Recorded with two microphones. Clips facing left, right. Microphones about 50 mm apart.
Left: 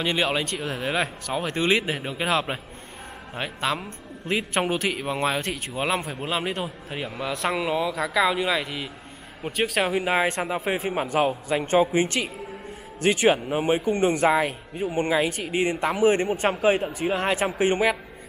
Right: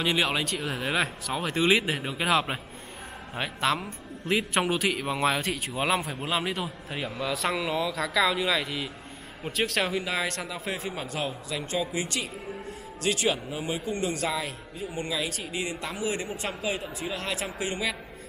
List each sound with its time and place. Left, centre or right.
0.0 s a man's voice: centre
9.9 s speech: left